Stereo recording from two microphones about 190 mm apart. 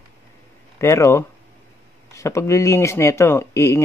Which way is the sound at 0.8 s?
15° left (ahead or behind).